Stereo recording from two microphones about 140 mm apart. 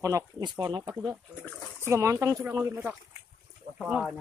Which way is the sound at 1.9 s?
20° right (ahead or behind).